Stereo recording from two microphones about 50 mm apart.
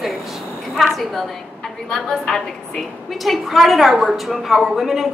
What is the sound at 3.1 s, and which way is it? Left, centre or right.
A woman's voice, centre.